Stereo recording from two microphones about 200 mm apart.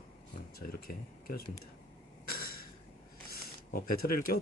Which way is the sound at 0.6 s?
50° left (ahead or behind).